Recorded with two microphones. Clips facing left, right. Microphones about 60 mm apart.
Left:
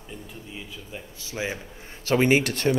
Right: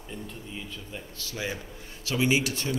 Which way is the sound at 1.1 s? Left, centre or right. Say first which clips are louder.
Left 3 dB; left.